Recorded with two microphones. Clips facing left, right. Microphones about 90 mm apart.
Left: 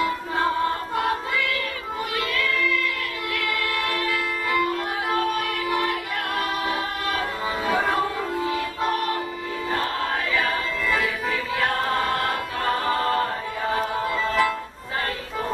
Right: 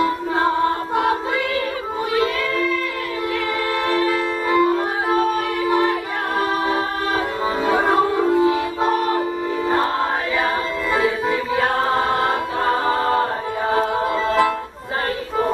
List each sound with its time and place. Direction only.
0.0 s music: 30° right (ahead or behind)
2.1 s music: 30° right (ahead or behind)
3.9 s music: 30° right (ahead or behind)
7.6 s music: 25° right (ahead or behind)
10.3 s music: 25° right (ahead or behind)